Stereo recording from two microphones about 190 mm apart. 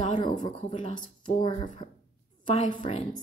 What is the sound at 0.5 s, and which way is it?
Speech, 25° left (ahead or behind).